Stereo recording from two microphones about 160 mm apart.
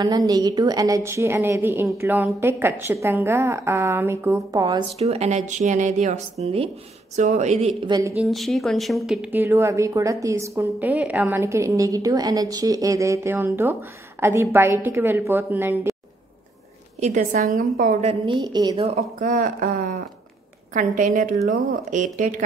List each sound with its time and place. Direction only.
0.0 s a woman's voice: 25° right (ahead or behind)
4.9 s speech: 40° right (ahead or behind)
6.4 s speech: 35° right (ahead or behind)
7.8 s a woman's voice: 25° right (ahead or behind)
8.2 s a woman's voice: centre (ahead or behind)
17.0 s speech: 50° right (ahead or behind); by 17.9 s 70° right (ahead or behind)
18.0 s a woman's voice: 30° right (ahead or behind)
18.9 s a woman's voice: 45° right (ahead or behind)